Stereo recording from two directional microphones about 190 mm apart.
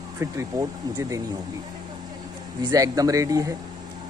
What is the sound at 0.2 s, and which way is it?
Speech, 15° right (ahead or behind).